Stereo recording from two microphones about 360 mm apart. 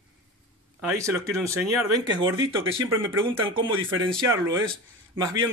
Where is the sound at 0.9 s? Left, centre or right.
Centre.